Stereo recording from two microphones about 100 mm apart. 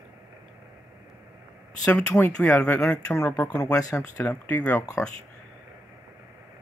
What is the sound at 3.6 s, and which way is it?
Speech, 35° left (ahead or behind).